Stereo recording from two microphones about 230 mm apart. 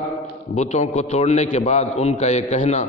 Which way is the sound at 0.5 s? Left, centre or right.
Left.